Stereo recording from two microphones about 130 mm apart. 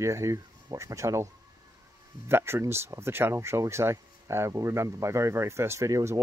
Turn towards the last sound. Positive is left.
turn(degrees=-25)  # may be behind; listen again after turning